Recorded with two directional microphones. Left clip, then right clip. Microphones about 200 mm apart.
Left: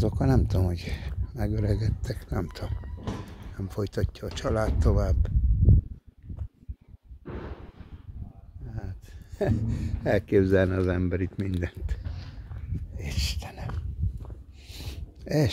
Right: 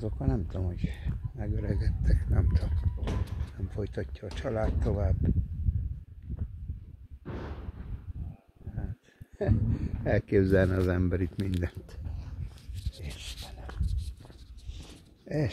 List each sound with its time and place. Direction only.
0.0 s speech: 40° left (ahead or behind); by 5.3 s 20° left (ahead or behind)
7.2 s a sound: 60° right (ahead or behind)
9.4 s speech: 35° left (ahead or behind)
10.4 s speech: centre (ahead or behind)
13.0 s a sound: 35° left (ahead or behind)
14.7 s zipper: 30° left (ahead or behind)